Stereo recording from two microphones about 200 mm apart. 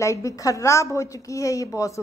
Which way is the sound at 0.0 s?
15° left (ahead or behind).